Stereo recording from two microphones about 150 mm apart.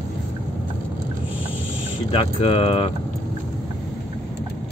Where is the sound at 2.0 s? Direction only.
40° left (ahead or behind).